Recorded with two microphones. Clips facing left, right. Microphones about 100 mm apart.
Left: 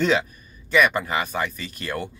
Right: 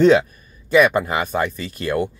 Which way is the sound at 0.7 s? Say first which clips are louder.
Right 5 dB; 15° right (ahead or behind).